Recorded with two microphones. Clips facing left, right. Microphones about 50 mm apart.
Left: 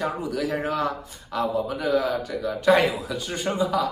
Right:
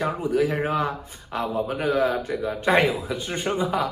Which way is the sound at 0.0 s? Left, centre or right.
Right.